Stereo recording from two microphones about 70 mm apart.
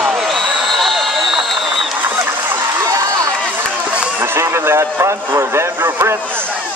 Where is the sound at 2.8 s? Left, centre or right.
Right.